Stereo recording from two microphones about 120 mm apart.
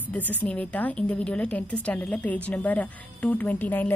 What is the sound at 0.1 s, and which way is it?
A woman's voice, 15° left (ahead or behind).